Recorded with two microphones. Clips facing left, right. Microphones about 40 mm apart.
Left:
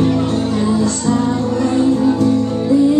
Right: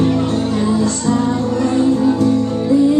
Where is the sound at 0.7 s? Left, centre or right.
Centre.